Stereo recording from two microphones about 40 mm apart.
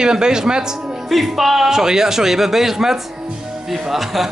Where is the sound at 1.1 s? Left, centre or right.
Centre.